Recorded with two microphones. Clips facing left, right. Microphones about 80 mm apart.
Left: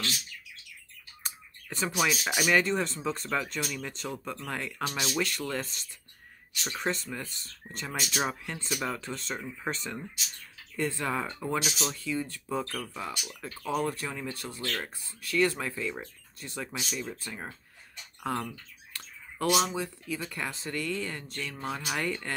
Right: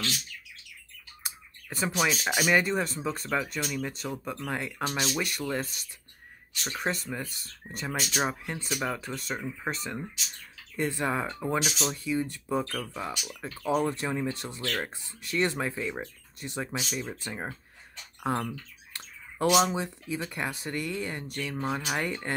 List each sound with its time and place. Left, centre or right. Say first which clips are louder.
1.2 s bird: even; centre
2.0 s speech: right 1 dB; centre
5.1 s speech: right 1 dB; centre
10.8 s speech: right 2 dB; right